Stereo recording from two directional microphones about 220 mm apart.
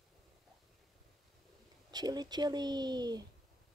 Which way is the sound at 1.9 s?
20° right (ahead or behind).